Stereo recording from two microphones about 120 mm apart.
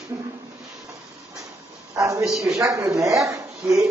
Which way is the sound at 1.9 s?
25° right (ahead or behind).